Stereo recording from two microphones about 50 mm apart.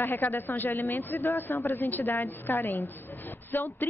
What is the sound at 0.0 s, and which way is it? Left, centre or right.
A man's voice, left.